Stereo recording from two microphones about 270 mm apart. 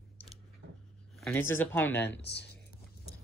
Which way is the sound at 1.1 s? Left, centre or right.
Centre.